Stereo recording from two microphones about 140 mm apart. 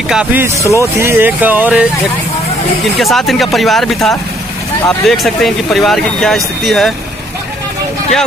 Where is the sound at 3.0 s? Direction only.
Centre (ahead or behind).